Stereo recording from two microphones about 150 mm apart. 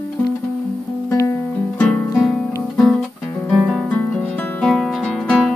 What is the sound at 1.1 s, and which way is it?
Music, 20° left (ahead or behind).